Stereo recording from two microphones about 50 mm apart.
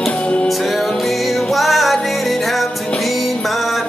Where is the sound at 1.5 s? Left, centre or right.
Centre.